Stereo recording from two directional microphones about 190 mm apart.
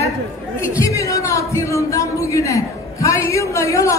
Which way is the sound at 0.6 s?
15° left (ahead or behind).